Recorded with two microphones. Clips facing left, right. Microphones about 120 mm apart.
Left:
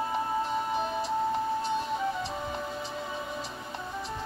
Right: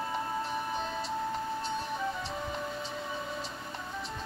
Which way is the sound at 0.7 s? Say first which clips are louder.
Left 5 dB; 15° left (ahead or behind).